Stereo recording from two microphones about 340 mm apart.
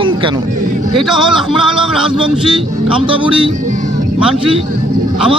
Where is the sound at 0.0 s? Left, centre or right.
Centre.